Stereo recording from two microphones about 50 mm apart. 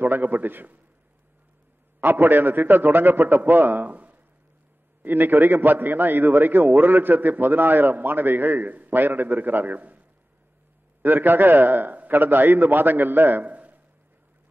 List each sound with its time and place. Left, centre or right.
0.0 s a man's voice: right
2.0 s a man's voice: right